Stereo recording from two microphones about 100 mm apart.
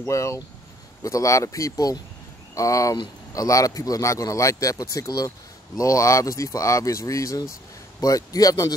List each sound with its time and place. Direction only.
0.0 s speech: 30° left (ahead or behind)